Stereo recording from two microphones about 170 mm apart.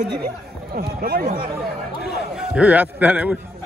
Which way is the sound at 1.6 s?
Centre (ahead or behind).